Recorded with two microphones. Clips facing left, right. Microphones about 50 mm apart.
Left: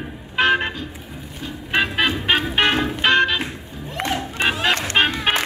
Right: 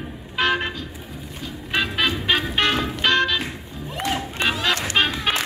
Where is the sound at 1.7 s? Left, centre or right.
Left.